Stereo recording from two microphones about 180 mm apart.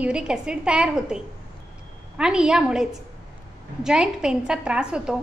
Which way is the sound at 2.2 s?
5° right (ahead or behind).